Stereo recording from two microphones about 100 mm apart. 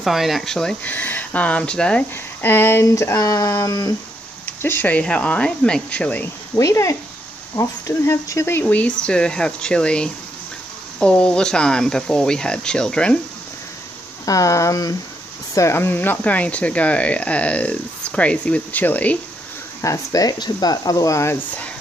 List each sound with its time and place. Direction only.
0.0 s speech: centre (ahead or behind)
0.8 s speech: 20° left (ahead or behind)
2.4 s speech: 20° left (ahead or behind)
4.5 s speech: 20° left (ahead or behind)
6.5 s speech: 30° left (ahead or behind); by 13.2 s 10° left (ahead or behind)
14.2 s speech: 35° left (ahead or behind); by 19.1 s 15° left (ahead or behind)
19.8 s speech: 35° left (ahead or behind)